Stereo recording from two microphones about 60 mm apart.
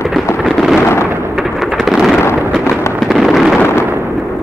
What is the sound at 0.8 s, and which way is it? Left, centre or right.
Thunder, left.